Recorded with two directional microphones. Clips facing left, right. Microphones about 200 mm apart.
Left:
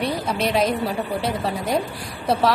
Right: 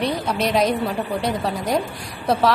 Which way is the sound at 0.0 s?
Centre (ahead or behind).